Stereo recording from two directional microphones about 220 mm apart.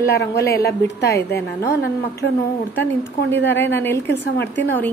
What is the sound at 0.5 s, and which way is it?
Speech, 45° left (ahead or behind).